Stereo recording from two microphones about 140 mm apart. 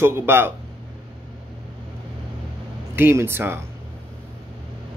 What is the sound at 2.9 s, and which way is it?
Speech, 15° right (ahead or behind).